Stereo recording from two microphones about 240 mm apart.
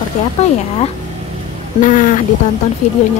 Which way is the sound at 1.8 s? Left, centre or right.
Left.